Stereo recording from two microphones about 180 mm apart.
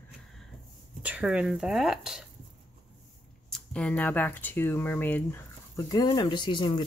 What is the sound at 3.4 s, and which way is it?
Speech, 5° left (ahead or behind).